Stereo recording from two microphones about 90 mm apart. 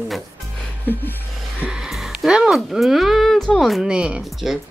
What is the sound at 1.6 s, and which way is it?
Speech, 5° right (ahead or behind).